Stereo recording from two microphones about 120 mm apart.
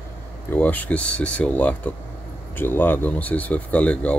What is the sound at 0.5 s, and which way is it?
Speech, 15° left (ahead or behind).